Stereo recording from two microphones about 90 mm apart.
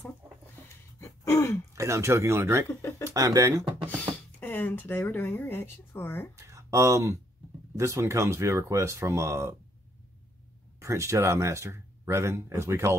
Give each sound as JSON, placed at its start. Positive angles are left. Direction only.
{"t": 0.9, "sound": "gasp", "side_deg": 30}
{"t": 1.8, "sound": "speech", "side_deg": -35}
{"t": 4.4, "sound": "speech", "side_deg": 20}
{"t": 6.3, "sound": "a sound", "side_deg": -35}
{"t": 7.7, "sound": "speech", "side_deg": -35}
{"t": 10.8, "sound": "speech", "side_deg": -35}